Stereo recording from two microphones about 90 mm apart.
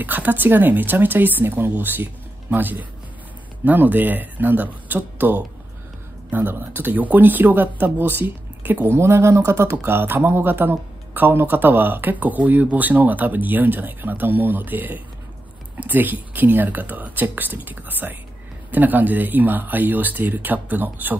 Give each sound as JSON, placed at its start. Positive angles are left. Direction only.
{"t": 0.0, "sound": "speech", "side_deg": -20}